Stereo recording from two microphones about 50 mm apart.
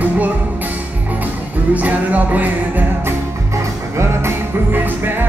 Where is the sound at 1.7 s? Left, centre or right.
Right.